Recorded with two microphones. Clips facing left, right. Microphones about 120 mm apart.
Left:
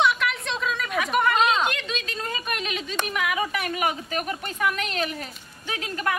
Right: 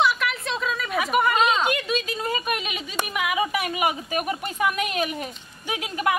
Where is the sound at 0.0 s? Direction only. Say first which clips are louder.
Even; centre (ahead or behind).